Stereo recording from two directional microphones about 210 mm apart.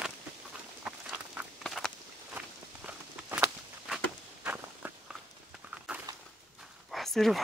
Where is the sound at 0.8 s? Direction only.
5° right (ahead or behind).